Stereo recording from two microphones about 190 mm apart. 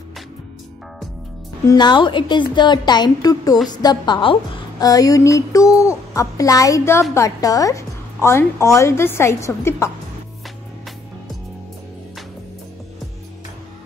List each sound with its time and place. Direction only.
1.7 s a woman's voice: 25° left (ahead or behind)